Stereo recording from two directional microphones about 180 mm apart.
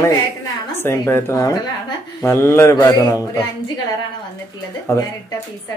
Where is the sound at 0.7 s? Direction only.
15° left (ahead or behind).